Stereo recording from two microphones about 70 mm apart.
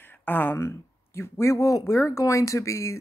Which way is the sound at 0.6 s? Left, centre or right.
Left.